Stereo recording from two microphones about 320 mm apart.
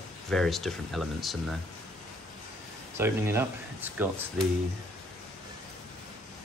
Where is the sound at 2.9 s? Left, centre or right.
Centre.